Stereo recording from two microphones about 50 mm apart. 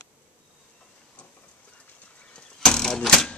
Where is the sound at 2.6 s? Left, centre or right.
Centre.